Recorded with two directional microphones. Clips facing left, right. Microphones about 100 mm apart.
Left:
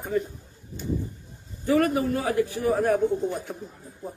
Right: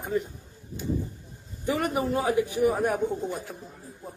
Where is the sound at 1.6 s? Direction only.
15° right (ahead or behind).